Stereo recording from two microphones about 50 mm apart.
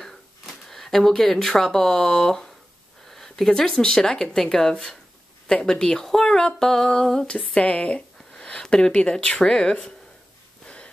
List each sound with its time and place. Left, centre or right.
0.7 s speech: centre
7.5 s speech: left